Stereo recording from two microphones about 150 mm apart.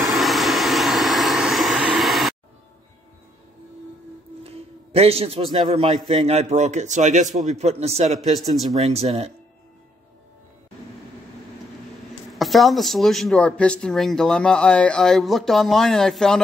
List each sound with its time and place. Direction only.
0.0 s vehicle: centre (ahead or behind)
4.4 s a man's voice: 40° right (ahead or behind)
12.3 s speech: centre (ahead or behind)